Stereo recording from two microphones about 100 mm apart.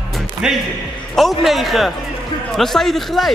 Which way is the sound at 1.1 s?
Centre (ahead or behind).